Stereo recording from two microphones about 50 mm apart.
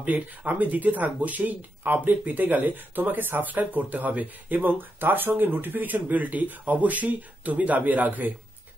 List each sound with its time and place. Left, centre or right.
0.0 s speech: right